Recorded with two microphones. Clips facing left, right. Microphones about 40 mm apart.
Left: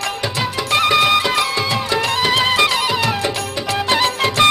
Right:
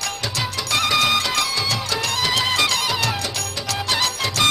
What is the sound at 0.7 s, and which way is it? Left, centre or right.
Music, left.